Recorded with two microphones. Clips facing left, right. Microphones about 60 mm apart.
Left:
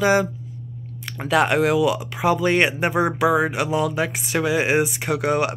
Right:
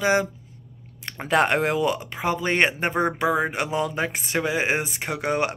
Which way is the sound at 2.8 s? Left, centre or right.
Centre.